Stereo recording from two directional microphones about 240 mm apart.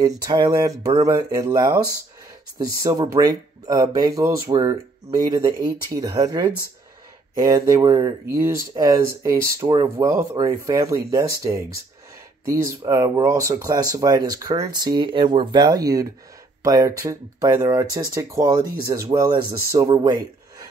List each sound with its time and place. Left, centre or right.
0.0 s speech: centre